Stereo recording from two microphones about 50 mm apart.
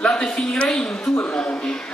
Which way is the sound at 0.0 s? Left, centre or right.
Centre.